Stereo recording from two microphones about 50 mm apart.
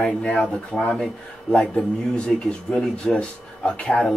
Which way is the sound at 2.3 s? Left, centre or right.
Centre.